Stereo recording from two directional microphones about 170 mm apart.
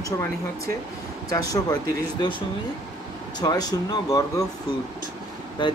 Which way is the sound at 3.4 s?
25° left (ahead or behind).